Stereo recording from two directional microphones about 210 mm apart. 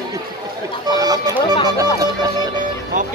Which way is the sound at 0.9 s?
20° right (ahead or behind).